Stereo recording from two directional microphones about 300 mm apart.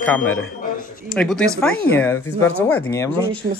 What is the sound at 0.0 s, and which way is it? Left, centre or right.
Speech, centre.